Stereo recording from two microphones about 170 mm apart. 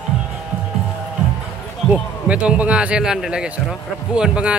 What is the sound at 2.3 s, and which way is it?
Speech, 5° right (ahead or behind).